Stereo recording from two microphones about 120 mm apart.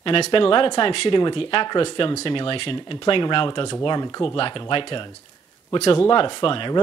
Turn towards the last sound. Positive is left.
turn(degrees=45)  # may be behind; listen again after turning